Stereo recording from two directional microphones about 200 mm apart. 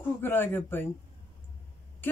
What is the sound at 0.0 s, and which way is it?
Speech, 10° left (ahead or behind).